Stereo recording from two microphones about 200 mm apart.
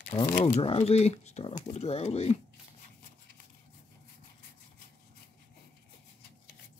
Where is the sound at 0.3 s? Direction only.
35° left (ahead or behind).